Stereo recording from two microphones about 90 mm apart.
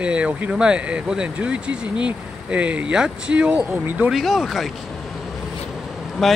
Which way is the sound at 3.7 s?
20° right (ahead or behind).